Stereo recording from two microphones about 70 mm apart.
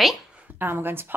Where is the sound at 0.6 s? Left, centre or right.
Right.